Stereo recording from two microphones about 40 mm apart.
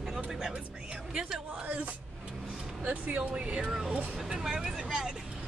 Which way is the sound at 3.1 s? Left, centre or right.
Right.